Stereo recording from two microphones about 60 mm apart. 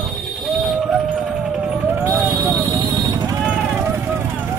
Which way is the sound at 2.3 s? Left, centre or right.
Right.